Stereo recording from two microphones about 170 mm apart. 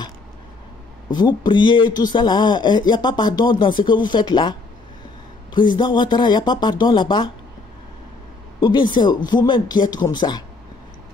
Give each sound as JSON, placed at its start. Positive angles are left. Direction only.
{"t": 1.1, "sound": "speech", "side_deg": 25}
{"t": 8.5, "sound": "speech", "side_deg": 25}